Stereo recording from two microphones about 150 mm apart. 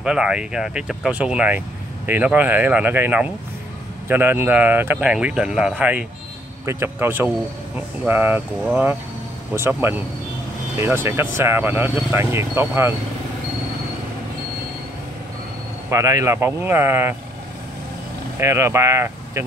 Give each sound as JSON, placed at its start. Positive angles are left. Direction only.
{"t": 0.0, "sound": "speech", "side_deg": -5}
{"t": 9.6, "sound": "speech", "side_deg": -15}
{"t": 15.9, "sound": "speech", "side_deg": -20}
{"t": 18.4, "sound": "speech", "side_deg": -20}